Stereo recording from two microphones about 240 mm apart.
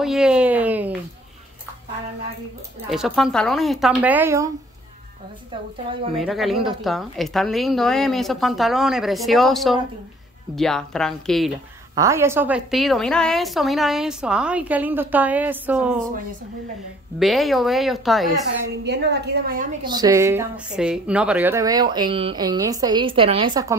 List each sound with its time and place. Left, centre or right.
0.0 s speech: centre
2.9 s a woman's voice: centre
6.1 s a woman's voice: centre
11.9 s a woman's voice: centre
17.2 s a woman's voice: centre
18.9 s a woman's voice: right
19.8 s a woman's voice: centre